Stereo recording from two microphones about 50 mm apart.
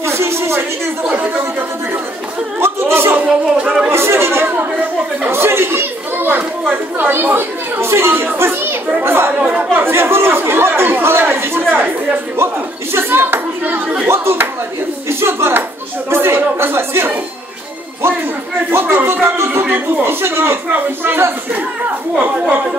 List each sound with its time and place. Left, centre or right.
0.0 s a sound: right
2.6 s speech: right
3.3 s speech: centre
3.9 s speech: right
8.4 s children playing: right
9.0 s speech: right
9.4 s speech: right
9.8 s speech: right
12.9 s a child's voice: right
14.0 s speech: right
18.7 s speech: right